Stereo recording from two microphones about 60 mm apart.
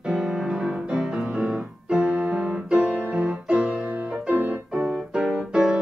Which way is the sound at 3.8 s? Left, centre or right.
Right.